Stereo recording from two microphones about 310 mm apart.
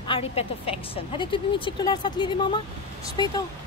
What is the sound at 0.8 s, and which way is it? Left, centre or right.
Speech, centre.